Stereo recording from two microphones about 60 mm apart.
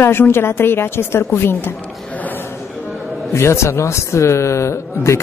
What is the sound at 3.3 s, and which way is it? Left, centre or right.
Speech, left.